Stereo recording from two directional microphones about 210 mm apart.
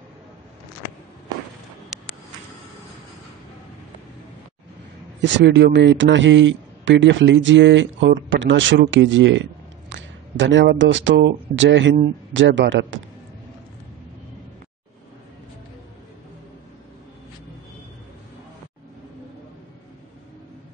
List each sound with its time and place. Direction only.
5.2 s a man's voice: 60° right (ahead or behind)